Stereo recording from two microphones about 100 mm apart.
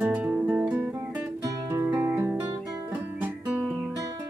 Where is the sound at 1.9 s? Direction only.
20° right (ahead or behind).